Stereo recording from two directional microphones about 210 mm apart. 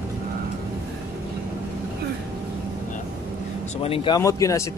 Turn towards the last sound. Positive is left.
turn(degrees=15)  # may be behind; listen again after turning